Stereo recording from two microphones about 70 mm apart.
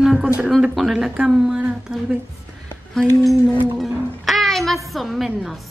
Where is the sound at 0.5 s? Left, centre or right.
Centre.